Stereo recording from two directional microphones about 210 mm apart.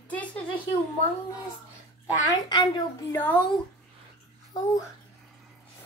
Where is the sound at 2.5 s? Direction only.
15° left (ahead or behind).